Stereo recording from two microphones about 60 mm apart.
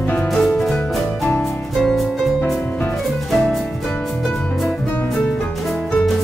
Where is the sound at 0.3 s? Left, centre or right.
Centre.